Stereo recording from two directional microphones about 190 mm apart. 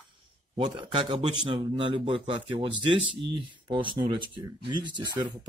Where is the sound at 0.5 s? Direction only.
25° right (ahead or behind).